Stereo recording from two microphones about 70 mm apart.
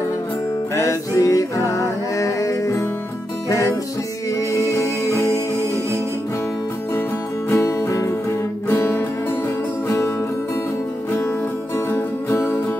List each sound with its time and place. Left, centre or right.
0.7 s music: left
4.4 s music: left
7.4 s music: left
8.6 s music: left
9.8 s music: left
11.9 s music: left